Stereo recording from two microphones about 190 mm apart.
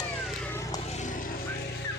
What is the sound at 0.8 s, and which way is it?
Vehicle, 40° left (ahead or behind).